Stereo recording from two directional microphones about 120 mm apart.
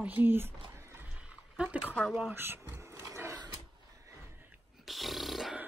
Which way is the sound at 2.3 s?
20° right (ahead or behind).